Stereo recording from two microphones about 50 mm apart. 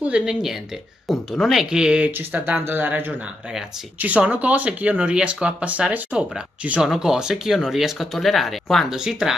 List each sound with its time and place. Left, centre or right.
0.2 s speech: centre
1.7 s speech: centre
2.0 s speech: right
4.0 s speech: right
6.8 s speech: centre
8.0 s speech: centre
8.9 s speech: centre